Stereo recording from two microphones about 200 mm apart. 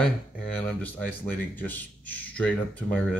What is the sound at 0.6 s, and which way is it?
Speech, 10° left (ahead or behind).